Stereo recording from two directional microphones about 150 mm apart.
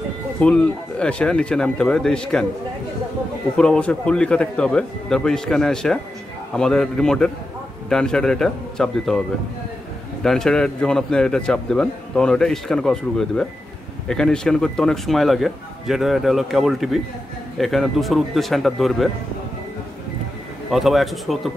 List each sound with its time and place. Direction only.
0.4 s a man's voice: 5° left (ahead or behind)
3.5 s a man's voice: 5° left (ahead or behind)
10.2 s a man's voice: 5° left (ahead or behind)
20.7 s a man's voice: centre (ahead or behind)